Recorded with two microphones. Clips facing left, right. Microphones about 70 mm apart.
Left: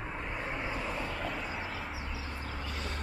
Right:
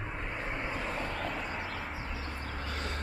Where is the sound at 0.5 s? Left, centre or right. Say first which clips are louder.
Right 1 dB; centre.